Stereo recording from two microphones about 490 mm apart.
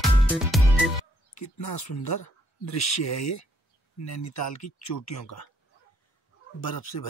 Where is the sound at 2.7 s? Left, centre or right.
Left.